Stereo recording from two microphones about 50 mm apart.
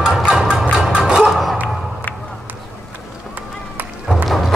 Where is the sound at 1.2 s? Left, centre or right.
Centre.